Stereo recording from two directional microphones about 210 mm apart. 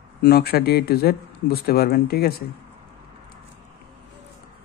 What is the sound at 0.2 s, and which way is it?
Speech, 50° left (ahead or behind).